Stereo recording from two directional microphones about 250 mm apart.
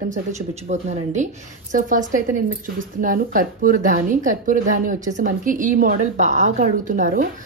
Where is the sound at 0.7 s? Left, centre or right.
Right.